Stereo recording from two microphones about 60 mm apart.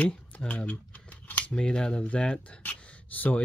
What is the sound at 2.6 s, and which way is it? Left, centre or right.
Speech, left.